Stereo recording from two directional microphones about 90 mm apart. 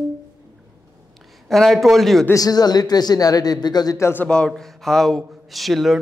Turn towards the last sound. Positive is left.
turn(degrees=0)  # may be behind; listen again after turning